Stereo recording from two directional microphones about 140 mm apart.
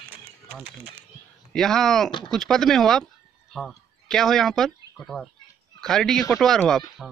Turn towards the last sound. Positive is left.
turn(degrees=0)  # may be behind; listen again after turning